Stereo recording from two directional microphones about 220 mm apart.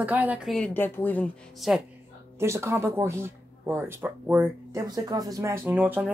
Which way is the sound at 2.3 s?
10° right (ahead or behind).